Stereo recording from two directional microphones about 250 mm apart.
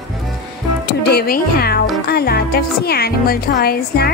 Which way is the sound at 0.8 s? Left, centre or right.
Left.